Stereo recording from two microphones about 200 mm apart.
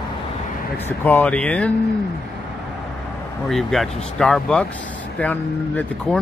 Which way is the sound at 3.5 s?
Centre (ahead or behind).